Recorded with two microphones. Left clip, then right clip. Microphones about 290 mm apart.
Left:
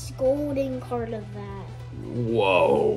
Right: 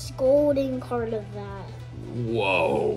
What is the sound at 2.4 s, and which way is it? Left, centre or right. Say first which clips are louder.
Speech: left 3 dB; centre.